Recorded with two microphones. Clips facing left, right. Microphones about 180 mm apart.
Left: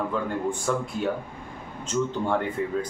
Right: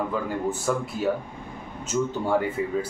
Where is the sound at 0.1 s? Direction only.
5° right (ahead or behind).